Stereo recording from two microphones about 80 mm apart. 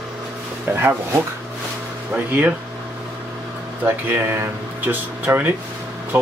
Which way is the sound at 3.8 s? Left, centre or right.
Right.